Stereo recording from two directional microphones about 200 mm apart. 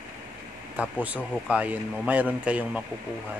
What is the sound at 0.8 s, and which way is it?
Speech, 5° right (ahead or behind).